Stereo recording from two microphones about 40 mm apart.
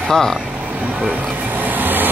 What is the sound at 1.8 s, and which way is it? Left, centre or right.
Vehicle, right.